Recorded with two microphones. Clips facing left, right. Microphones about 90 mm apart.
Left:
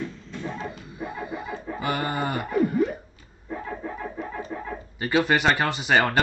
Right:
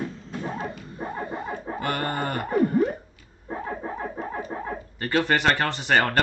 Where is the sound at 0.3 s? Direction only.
45° right (ahead or behind).